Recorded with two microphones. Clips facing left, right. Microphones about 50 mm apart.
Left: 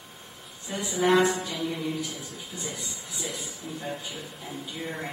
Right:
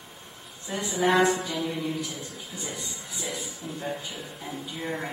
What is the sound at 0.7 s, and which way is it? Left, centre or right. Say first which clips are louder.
A man's voice: left 1 dB; centre.